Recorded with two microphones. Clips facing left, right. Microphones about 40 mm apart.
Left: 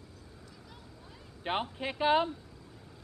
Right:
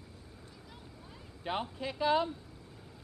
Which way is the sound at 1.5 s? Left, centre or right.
Left.